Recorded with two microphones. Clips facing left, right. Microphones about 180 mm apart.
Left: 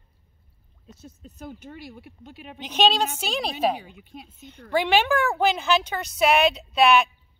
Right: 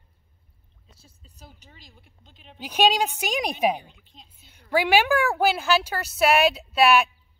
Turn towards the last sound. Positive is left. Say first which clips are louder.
# even
turn(degrees=-5)  # may be behind; listen again after turning